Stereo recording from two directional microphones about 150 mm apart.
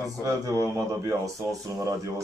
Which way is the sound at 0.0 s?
25° right (ahead or behind).